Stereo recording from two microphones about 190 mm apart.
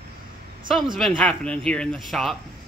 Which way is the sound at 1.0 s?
5° left (ahead or behind).